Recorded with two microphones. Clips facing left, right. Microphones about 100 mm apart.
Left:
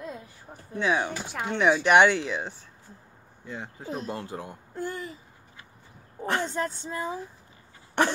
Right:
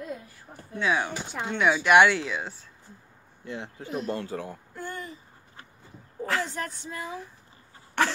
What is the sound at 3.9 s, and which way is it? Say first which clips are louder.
Speech: right 3 dB; 25° left (ahead or behind).